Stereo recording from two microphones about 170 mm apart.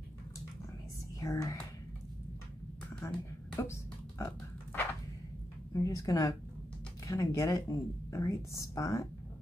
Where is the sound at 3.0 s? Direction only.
15° left (ahead or behind).